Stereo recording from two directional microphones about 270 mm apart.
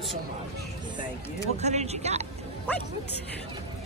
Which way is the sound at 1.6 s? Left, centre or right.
Right.